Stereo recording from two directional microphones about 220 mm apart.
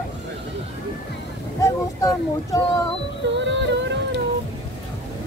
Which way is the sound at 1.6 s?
15° left (ahead or behind).